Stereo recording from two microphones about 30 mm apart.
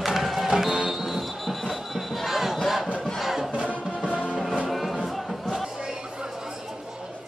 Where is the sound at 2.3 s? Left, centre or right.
Centre.